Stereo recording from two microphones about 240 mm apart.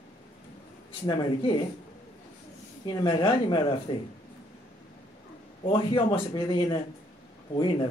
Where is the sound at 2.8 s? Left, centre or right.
Centre.